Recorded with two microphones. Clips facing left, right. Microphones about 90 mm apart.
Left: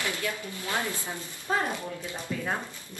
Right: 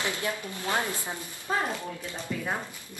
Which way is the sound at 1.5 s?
5° left (ahead or behind).